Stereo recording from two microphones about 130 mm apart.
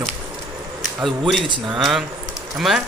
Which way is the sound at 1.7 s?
Centre (ahead or behind).